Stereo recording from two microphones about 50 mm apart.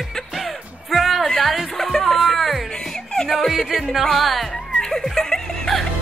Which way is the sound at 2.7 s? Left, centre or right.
Centre.